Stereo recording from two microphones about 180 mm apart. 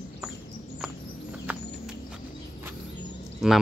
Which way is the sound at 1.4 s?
5° right (ahead or behind).